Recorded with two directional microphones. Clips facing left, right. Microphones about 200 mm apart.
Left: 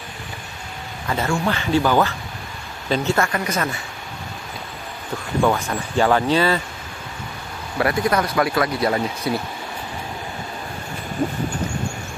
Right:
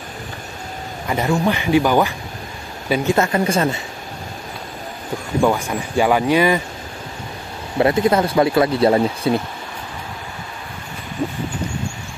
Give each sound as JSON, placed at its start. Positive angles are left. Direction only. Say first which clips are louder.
{"t": 1.0, "sound": "speech", "louder": "right 3 dB", "side_deg": -15}
{"t": 3.3, "sound": "speech", "louder": "right 6 dB", "side_deg": -25}
{"t": 5.4, "sound": "speech", "louder": "right 2 dB", "side_deg": -10}
{"t": 7.7, "sound": "speech", "louder": "right 4 dB", "side_deg": -25}